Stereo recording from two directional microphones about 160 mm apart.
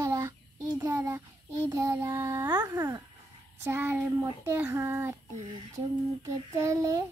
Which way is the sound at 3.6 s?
15° right (ahead or behind).